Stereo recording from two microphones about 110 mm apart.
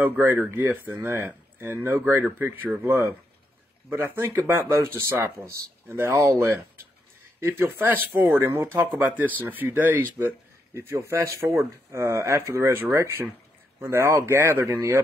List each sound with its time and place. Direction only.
0.0 s speech: 20° right (ahead or behind)